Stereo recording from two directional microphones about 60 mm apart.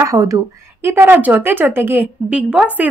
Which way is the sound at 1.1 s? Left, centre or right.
Right.